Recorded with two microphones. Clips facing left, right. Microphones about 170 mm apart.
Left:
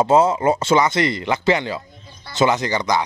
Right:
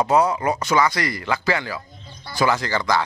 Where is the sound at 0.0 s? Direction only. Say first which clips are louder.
Left 3 dB; 25° left (ahead or behind).